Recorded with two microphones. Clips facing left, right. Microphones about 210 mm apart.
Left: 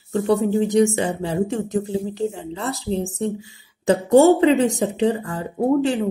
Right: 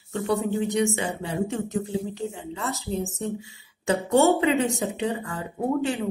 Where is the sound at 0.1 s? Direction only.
35° left (ahead or behind).